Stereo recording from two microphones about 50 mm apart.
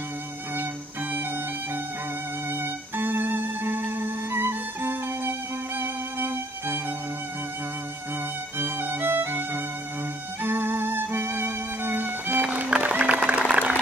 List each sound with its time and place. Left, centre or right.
2.5 s music: right
8.5 s violin: right
10.4 s music: right
12.7 s music: right